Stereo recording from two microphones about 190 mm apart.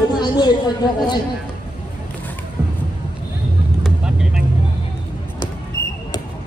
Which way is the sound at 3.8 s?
5° right (ahead or behind).